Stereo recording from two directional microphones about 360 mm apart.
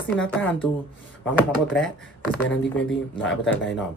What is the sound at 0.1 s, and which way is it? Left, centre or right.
Speech, centre.